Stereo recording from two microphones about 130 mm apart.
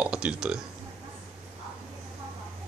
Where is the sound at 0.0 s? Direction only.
5° right (ahead or behind).